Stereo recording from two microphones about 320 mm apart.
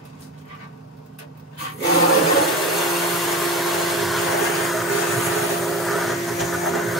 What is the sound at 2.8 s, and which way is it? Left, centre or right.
Vacuum cleaner, centre.